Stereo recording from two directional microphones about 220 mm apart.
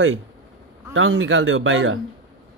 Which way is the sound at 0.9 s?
65° right (ahead or behind).